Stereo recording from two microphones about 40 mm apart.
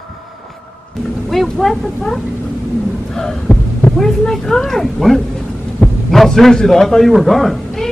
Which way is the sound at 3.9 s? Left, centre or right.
Centre.